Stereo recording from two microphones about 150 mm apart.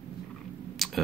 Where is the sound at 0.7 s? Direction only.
Centre (ahead or behind).